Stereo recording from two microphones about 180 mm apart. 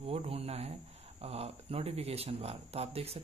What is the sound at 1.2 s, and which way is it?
Speech, 35° right (ahead or behind).